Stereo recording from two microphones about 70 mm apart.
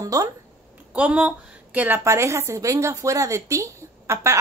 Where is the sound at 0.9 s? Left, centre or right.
Centre.